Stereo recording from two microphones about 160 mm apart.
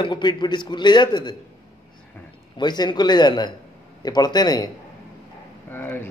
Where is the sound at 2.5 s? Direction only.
25° left (ahead or behind).